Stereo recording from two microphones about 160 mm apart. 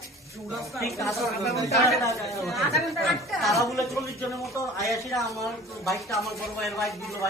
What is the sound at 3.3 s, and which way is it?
Speech, centre (ahead or behind).